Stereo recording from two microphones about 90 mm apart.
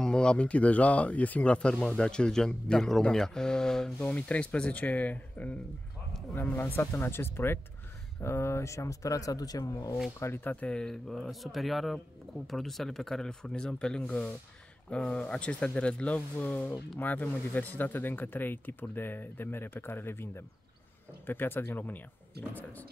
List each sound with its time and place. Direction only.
0.0 s speech: 10° left (ahead or behind); by 9.9 s 40° left (ahead or behind)
10.2 s speech: 25° left (ahead or behind)